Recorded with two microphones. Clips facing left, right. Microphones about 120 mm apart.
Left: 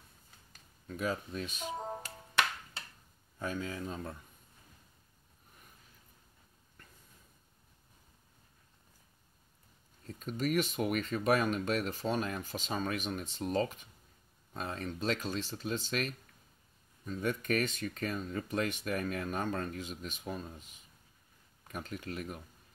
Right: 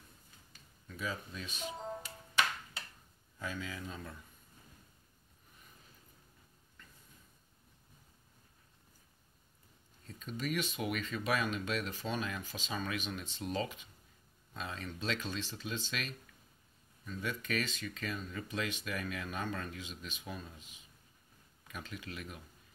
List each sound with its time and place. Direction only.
0.8 s speech: 50° left (ahead or behind)
3.3 s speech: 45° left (ahead or behind)
10.0 s speech: 50° left (ahead or behind)